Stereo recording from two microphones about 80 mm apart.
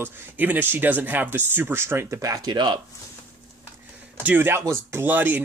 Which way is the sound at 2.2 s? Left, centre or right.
Right.